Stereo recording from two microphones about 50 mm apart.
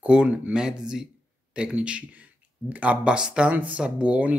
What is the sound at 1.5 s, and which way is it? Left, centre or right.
Speech, right.